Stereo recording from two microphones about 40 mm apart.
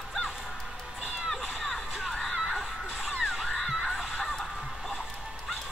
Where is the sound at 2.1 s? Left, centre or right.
Centre.